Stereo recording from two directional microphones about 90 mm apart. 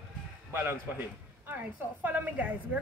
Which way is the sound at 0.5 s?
25° right (ahead or behind).